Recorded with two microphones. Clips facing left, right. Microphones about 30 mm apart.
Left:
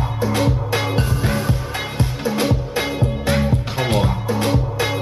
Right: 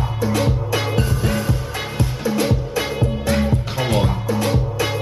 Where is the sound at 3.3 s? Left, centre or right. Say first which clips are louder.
Even; centre.